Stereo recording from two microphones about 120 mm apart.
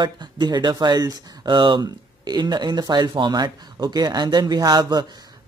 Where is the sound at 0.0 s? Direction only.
40° right (ahead or behind).